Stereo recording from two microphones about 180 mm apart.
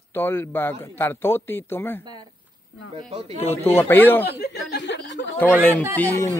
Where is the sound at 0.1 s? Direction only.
10° left (ahead or behind).